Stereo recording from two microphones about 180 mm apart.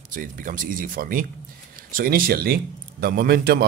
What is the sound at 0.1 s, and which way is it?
Speech, 50° right (ahead or behind).